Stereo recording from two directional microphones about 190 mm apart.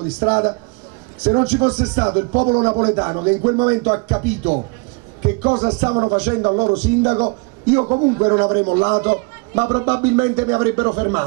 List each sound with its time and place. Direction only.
0.2 s a man's voice: 30° right (ahead or behind)